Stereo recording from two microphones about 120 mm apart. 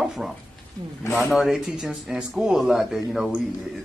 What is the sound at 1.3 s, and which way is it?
Speech, 5° right (ahead or behind).